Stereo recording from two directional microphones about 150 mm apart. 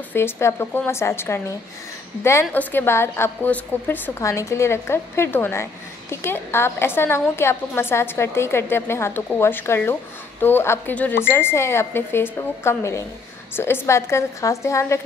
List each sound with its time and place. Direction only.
0.1 s a woman's voice: 15° left (ahead or behind)
2.5 s a woman's voice: 15° left (ahead or behind)